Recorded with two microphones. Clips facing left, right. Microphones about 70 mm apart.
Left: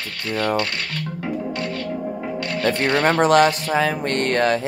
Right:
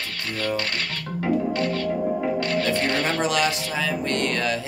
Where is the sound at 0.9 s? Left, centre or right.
Right.